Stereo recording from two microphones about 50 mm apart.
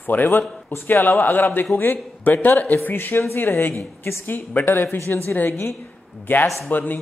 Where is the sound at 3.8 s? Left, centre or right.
Left.